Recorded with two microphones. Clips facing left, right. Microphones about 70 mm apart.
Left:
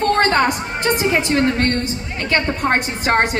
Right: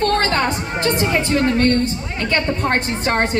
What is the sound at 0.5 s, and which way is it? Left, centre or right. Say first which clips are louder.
A woman's voice: left 1 dB; centre.